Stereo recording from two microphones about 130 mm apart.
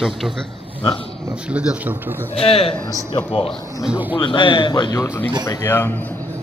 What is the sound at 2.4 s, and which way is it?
A man's voice, 45° left (ahead or behind).